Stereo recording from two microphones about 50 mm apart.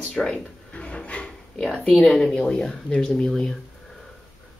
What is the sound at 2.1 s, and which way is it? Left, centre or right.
Speech, centre.